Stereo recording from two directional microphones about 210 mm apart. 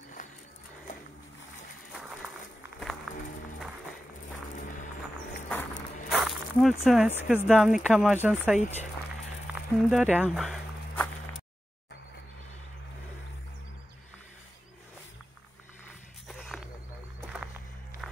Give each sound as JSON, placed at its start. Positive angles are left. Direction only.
{"t": 1.9, "sound": "applause", "side_deg": 0}
{"t": 3.1, "sound": "music", "side_deg": 0}
{"t": 6.0, "sound": "a sound", "side_deg": 0}
{"t": 7.2, "sound": "speech", "side_deg": 0}
{"t": 8.5, "sound": "speech", "side_deg": 30}
{"t": 9.5, "sound": "walk", "side_deg": -5}
{"t": 16.3, "sound": "a sound", "side_deg": 0}